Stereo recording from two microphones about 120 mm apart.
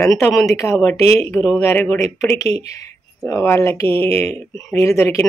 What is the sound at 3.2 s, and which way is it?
Speech, 20° left (ahead or behind).